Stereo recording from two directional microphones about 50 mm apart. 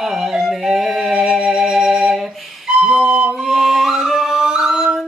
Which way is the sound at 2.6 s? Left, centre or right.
Centre.